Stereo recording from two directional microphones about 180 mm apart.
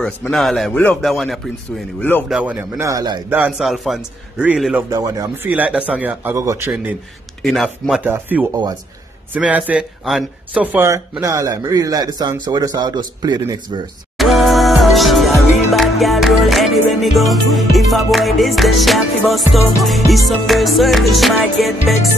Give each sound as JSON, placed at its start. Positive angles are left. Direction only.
{"t": 0.0, "sound": "music", "side_deg": 5}
{"t": 2.0, "sound": "speech", "side_deg": 10}
{"t": 2.2, "sound": "a man's voice", "side_deg": -5}
{"t": 3.3, "sound": "music", "side_deg": -10}
{"t": 4.8, "sound": "speech", "side_deg": -20}
{"t": 5.5, "sound": "a man's voice", "side_deg": -10}
{"t": 7.4, "sound": "music", "side_deg": 0}
{"t": 8.1, "sound": "a man's voice", "side_deg": -10}
{"t": 14.1, "sound": "music", "side_deg": 0}